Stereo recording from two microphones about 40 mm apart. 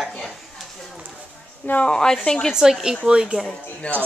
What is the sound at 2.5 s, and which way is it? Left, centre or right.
Speech, centre.